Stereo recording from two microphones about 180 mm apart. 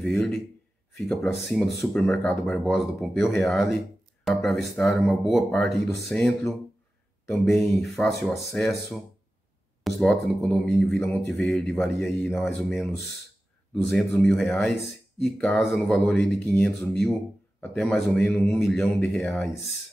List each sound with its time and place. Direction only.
0.0 s speech: 5° left (ahead or behind)